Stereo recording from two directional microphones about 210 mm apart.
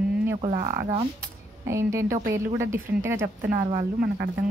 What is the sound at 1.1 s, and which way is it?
A woman's voice, 15° right (ahead or behind).